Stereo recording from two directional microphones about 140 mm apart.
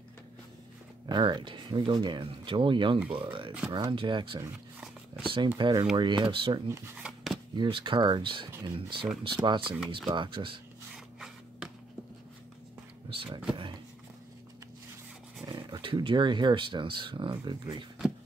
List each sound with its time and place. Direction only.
1.0 s speech: 30° right (ahead or behind)
7.0 s shuffling cards: 5° right (ahead or behind)
7.5 s speech: 35° right (ahead or behind)
10.9 s rub: 5° right (ahead or behind)
13.1 s a sound: 40° right (ahead or behind)
15.4 s speech: 35° right (ahead or behind)